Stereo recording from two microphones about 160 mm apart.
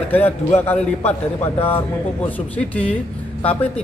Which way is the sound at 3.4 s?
10° left (ahead or behind).